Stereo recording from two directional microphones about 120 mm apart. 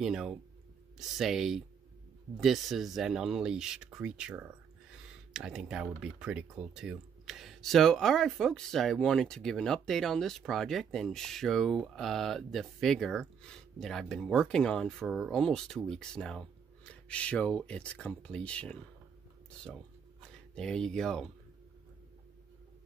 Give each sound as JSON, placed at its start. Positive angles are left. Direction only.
{"t": 0.0, "sound": "speech", "side_deg": -5}
{"t": 20.2, "sound": "speech", "side_deg": 5}